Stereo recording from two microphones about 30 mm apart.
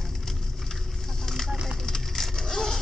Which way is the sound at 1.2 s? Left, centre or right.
Centre.